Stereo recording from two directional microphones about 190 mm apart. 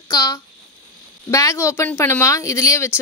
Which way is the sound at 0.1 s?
20° left (ahead or behind).